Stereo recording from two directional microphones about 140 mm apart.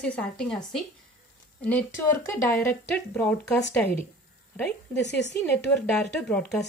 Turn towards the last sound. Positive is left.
turn(degrees=10)  # may be behind; listen again after turning